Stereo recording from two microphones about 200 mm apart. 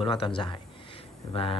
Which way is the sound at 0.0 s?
25° left (ahead or behind).